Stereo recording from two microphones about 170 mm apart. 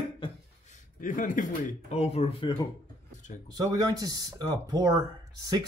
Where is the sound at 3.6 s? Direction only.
20° right (ahead or behind).